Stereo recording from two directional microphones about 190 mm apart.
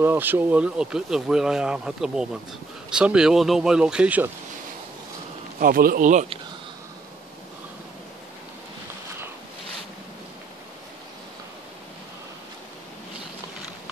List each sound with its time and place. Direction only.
0.0 s speech: 10° right (ahead or behind)
5.6 s speech: 50° right (ahead or behind)